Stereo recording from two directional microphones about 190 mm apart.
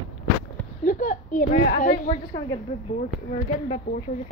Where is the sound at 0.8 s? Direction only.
45° left (ahead or behind).